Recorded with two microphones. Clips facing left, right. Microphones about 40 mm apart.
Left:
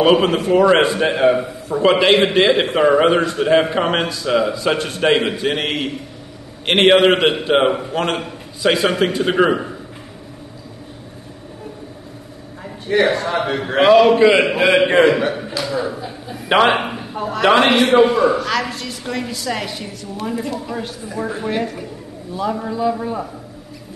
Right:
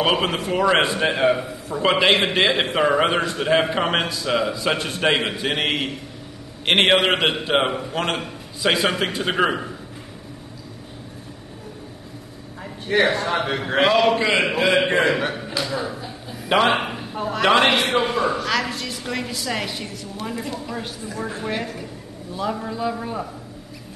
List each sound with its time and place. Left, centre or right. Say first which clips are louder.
0.0 s a man's voice: left 7 dB; centre
13.0 s a man's voice: left 3 dB; centre
15.8 s a man's voice: left 5 dB; centre
16.8 s a man's voice: left 3 dB; centre